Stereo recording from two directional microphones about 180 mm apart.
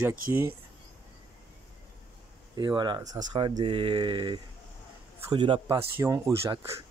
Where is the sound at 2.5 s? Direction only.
25° right (ahead or behind).